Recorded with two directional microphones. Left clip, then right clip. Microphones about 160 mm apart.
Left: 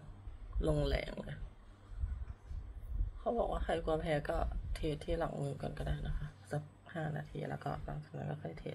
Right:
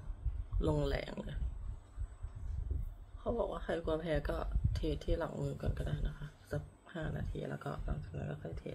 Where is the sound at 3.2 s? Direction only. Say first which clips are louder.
Left 2 dB; 20° right (ahead or behind).